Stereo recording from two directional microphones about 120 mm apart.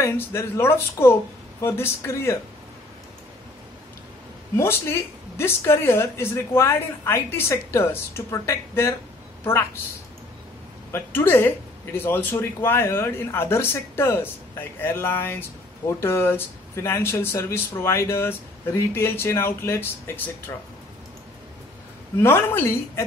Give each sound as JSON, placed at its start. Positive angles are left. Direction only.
{"t": 0.0, "sound": "speech", "side_deg": 20}
{"t": 4.6, "sound": "a woman's voice", "side_deg": 20}
{"t": 10.9, "sound": "speech", "side_deg": 15}
{"t": 22.2, "sound": "speech", "side_deg": 20}